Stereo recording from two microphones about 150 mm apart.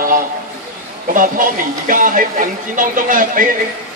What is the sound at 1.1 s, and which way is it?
Speech, 65° right (ahead or behind).